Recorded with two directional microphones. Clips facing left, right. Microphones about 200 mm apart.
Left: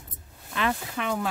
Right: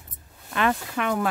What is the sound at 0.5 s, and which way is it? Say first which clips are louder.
Speech: right 4 dB; 55° right (ahead or behind).